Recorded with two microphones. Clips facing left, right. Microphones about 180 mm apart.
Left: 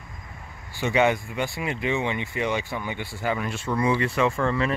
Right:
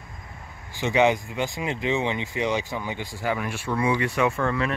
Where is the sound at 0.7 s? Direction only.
15° right (ahead or behind); by 4.7 s centre (ahead or behind).